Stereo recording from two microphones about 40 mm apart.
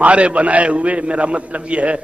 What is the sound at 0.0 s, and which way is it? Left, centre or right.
A man's voice, right.